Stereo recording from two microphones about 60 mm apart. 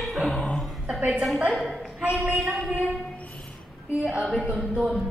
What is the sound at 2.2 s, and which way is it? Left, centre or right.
Speech, right.